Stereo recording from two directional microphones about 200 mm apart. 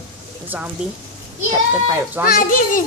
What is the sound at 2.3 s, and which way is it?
Speech, 45° left (ahead or behind).